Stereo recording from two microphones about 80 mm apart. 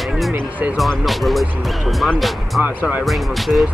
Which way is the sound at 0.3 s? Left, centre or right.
Right.